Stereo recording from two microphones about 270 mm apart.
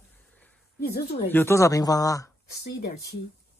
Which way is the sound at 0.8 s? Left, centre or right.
Left.